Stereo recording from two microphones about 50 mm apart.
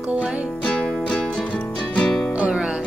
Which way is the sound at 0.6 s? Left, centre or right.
Left.